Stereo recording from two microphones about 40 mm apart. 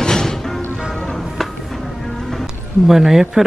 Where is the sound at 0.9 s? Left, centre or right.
Left.